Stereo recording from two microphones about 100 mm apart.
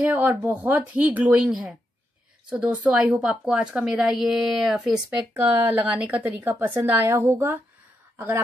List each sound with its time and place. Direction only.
0.0 s a woman's voice: 15° right (ahead or behind)
1.4 s a woman's voice: 5° right (ahead or behind)
5.3 s a woman's voice: 20° right (ahead or behind)